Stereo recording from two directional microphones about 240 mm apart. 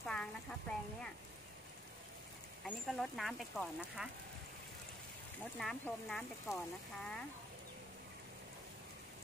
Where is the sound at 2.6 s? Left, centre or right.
Centre.